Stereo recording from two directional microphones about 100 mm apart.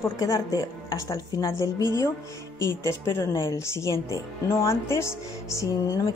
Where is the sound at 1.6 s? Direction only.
40° right (ahead or behind).